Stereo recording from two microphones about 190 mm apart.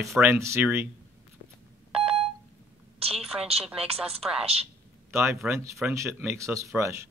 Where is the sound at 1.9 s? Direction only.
30° right (ahead or behind).